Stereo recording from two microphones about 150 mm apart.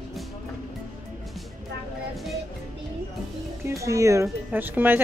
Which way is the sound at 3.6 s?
20° right (ahead or behind).